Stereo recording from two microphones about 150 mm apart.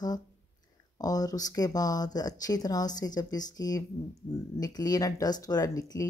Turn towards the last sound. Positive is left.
turn(degrees=25)  # may be behind; listen again after turning